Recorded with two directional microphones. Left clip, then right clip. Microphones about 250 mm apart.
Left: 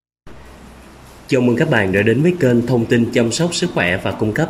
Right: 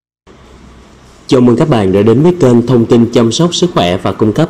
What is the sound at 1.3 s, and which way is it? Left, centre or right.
A man's voice, centre.